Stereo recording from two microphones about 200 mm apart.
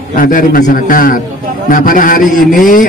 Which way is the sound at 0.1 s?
40° left (ahead or behind).